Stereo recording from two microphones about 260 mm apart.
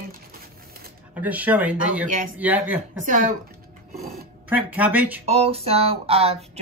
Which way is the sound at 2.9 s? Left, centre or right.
Right.